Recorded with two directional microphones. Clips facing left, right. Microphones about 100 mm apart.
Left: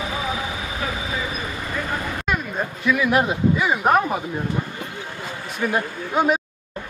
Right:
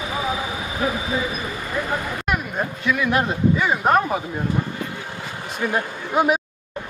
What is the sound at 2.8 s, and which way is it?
A man's voice, 5° left (ahead or behind).